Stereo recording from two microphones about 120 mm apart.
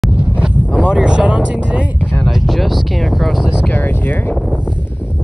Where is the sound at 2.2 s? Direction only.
Centre (ahead or behind).